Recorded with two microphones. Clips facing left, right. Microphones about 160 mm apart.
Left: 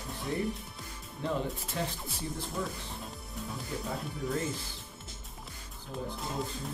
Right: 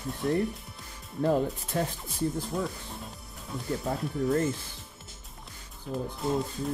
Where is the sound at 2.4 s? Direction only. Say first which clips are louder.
Right 4 dB; centre (ahead or behind).